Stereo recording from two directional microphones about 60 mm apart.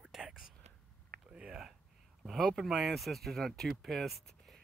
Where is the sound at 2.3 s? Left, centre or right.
Centre.